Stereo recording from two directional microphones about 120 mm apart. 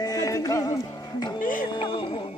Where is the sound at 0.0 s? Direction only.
30° left (ahead or behind).